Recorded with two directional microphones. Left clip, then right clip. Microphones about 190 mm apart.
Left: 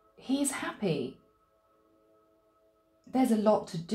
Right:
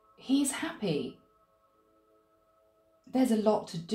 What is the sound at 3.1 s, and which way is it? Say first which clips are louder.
Speech: left 1 dB; 25° left (ahead or behind).